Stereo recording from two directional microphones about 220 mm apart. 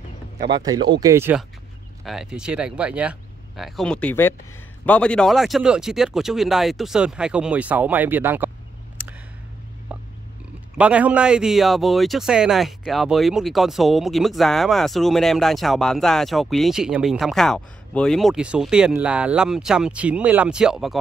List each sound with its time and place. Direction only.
0.5 s speech: 20° right (ahead or behind)
9.9 s oink: 5° right (ahead or behind)
10.8 s speech: 5° right (ahead or behind)